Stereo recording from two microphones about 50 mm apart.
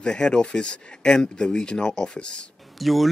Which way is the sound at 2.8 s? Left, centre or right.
Centre.